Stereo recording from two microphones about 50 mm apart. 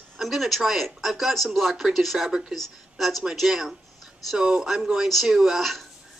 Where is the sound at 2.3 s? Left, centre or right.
Centre.